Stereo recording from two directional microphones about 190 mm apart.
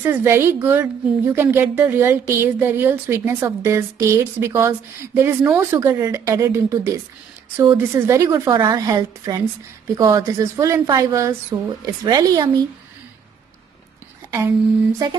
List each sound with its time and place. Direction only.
0.0 s a woman's voice: 10° right (ahead or behind)
8.5 s a woman's voice: 25° right (ahead or behind)
15.0 s a woman's voice: 20° right (ahead or behind)